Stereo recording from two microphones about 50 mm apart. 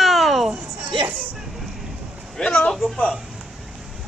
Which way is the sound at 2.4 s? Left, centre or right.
Centre.